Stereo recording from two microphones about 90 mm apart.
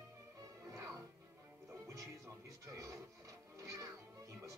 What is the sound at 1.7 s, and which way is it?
Music, 35° right (ahead or behind).